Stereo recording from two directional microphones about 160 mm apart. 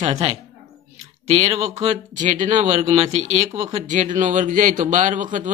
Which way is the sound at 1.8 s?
50° right (ahead or behind).